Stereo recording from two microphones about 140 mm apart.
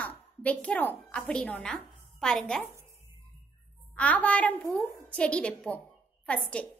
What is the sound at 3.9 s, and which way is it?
A woman's voice, 10° left (ahead or behind).